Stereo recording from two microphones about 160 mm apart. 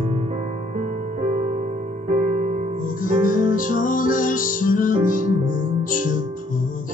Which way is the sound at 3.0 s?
55° left (ahead or behind).